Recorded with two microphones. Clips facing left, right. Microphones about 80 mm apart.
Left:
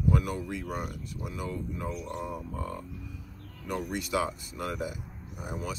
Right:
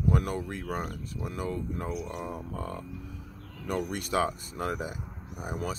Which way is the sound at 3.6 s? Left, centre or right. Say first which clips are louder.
Right 1 dB; right.